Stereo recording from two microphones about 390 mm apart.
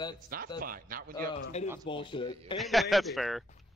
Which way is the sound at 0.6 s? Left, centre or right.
Right.